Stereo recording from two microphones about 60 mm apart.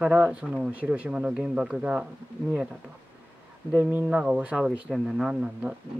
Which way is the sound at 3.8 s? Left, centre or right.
Right.